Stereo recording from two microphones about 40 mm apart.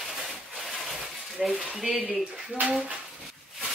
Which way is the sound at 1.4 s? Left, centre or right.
Centre.